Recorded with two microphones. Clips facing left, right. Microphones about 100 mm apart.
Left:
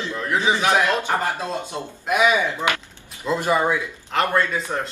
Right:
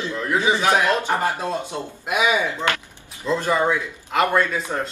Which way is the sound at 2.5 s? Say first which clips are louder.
Even; 15° left (ahead or behind).